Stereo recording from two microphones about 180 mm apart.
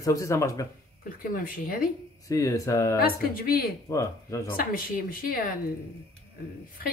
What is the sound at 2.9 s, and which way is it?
Speech, 55° left (ahead or behind).